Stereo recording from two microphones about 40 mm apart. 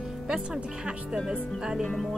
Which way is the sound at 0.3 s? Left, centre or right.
Centre.